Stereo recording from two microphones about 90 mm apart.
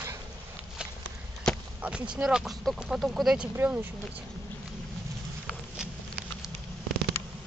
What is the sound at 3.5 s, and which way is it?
Speech, 20° right (ahead or behind).